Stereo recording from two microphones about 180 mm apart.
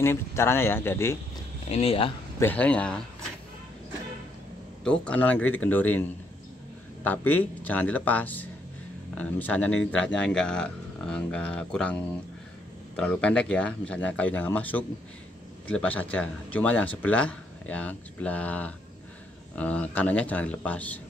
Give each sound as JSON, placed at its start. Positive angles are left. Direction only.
{"t": 0.0, "sound": "a man's voice", "side_deg": 15}
{"t": 1.7, "sound": "speech", "side_deg": 35}
{"t": 2.4, "sound": "a man's voice", "side_deg": 10}
{"t": 4.8, "sound": "a man's voice", "side_deg": 5}
{"t": 7.6, "sound": "a man's voice", "side_deg": 10}